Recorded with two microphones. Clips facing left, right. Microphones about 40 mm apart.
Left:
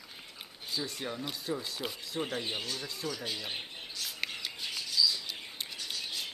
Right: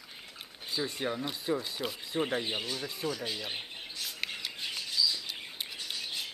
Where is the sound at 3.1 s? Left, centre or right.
Centre.